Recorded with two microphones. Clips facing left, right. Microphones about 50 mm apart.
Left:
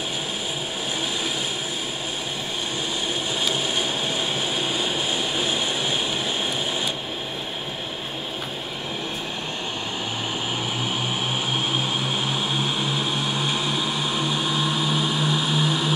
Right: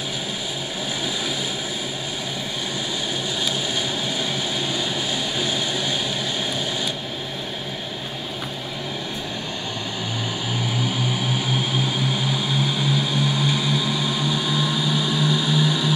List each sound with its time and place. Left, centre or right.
4.6 s vehicle: left
10.8 s vehicle: left